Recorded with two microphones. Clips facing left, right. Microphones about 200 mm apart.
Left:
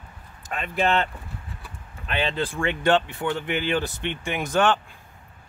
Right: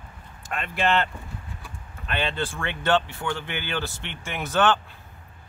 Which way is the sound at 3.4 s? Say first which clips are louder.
Left 6 dB; 15° left (ahead or behind).